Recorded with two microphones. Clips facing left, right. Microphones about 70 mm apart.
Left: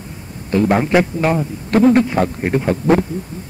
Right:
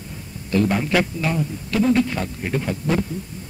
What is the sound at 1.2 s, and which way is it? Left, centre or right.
A man's voice, left.